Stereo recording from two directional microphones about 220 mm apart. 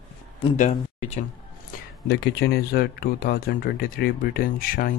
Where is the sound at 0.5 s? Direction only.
35° left (ahead or behind).